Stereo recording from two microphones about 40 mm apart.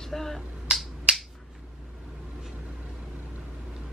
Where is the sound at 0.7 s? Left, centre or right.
Right.